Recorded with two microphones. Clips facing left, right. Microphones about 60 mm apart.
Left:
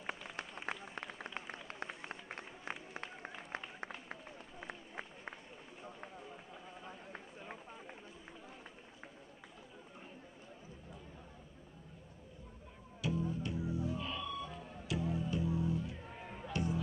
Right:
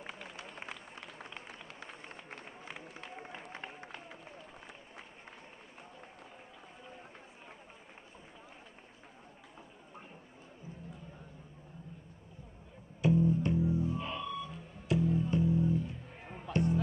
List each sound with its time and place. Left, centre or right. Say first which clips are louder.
0.0 s a sound: left 2 dB; left
13.0 s music: right 9 dB; right
13.7 s music: right 4 dB; right
16.4 s music: right 6 dB; right